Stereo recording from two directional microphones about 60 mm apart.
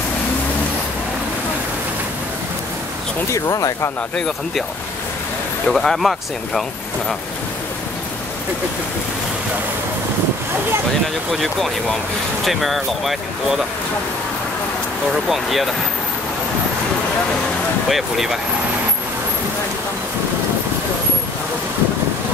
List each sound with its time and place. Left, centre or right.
3.3 s speech: left
5.7 s speech: centre
11.4 s speech: centre
15.2 s speech: centre
17.8 s speech: centre